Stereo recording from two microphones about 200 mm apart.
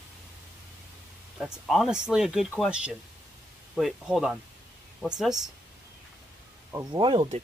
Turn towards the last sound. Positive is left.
turn(degrees=-25)  # may be behind; listen again after turning